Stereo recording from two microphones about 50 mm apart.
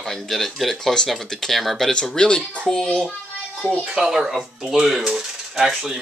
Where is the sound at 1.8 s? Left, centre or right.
Centre.